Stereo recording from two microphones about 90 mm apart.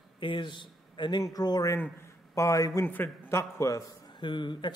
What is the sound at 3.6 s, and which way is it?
Speech, 35° left (ahead or behind).